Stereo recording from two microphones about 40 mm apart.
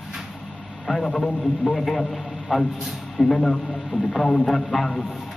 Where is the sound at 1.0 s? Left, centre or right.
Left.